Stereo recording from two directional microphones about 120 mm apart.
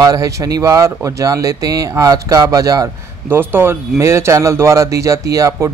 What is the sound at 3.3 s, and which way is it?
Speech, 20° right (ahead or behind).